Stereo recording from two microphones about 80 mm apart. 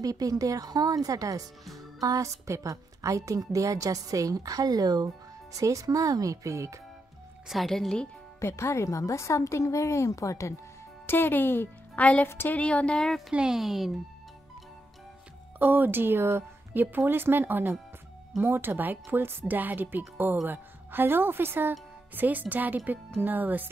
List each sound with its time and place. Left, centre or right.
0.0 s a woman's voice: right
7.4 s speech: centre
8.4 s speech: left
11.1 s speech: left
12.3 s a woman's voice: left
12.5 s speech: centre
13.3 s speech: centre
15.6 s speech: right